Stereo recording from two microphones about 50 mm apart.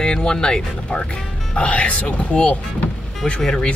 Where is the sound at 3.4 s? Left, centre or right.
Centre.